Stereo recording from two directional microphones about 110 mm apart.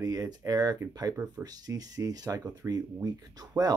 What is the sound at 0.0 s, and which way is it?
Speech, 35° right (ahead or behind).